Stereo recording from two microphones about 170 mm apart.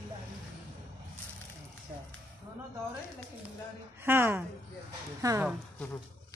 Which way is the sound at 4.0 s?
15° right (ahead or behind).